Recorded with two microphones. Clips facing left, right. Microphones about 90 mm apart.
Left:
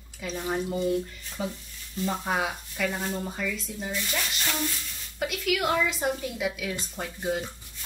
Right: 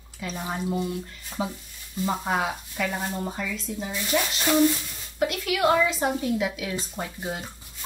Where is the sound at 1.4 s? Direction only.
10° right (ahead or behind).